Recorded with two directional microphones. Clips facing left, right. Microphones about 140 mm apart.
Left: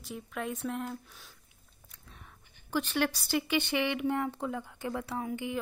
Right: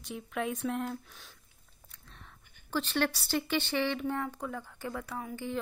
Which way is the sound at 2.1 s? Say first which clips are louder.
Left 1 dB; 10° left (ahead or behind).